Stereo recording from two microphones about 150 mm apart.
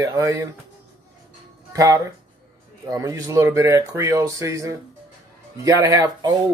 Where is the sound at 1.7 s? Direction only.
20° right (ahead or behind).